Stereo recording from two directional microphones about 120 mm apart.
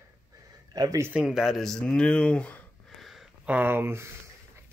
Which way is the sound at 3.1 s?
Centre (ahead or behind).